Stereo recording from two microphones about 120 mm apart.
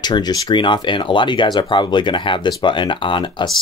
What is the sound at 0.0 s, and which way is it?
Speech, 35° left (ahead or behind).